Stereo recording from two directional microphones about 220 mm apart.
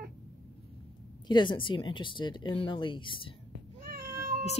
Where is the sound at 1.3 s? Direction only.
20° left (ahead or behind).